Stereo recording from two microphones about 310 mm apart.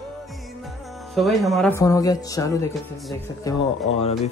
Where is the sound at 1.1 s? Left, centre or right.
Centre.